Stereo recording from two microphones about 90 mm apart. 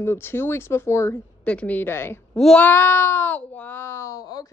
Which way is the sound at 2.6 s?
25° left (ahead or behind).